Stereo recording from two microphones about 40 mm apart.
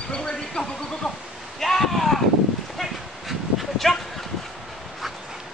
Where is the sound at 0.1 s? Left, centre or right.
Left.